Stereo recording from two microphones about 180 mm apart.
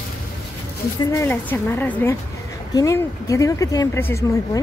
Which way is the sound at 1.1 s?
10° left (ahead or behind).